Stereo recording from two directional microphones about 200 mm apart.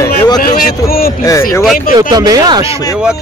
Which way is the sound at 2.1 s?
20° right (ahead or behind).